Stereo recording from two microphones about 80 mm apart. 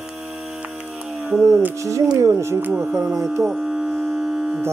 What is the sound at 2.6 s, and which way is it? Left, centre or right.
Speech, right.